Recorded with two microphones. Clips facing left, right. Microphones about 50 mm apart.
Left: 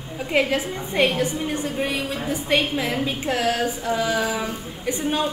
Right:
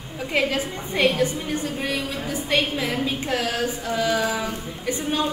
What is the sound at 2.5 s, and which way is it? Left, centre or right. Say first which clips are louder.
A woman's voice: left 1 dB; centre.